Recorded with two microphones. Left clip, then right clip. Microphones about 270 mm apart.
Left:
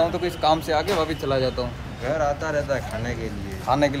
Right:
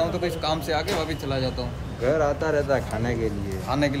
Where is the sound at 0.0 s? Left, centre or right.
Centre.